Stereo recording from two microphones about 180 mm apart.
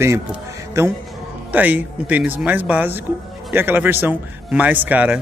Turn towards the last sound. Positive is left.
turn(degrees=-10)  # may be behind; listen again after turning